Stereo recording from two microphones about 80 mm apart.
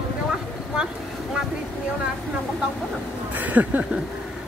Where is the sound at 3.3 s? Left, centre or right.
Right.